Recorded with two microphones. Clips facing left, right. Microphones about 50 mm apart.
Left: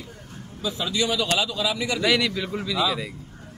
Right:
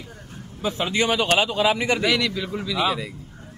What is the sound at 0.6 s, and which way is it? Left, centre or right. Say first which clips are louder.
Speech: right 3 dB; right.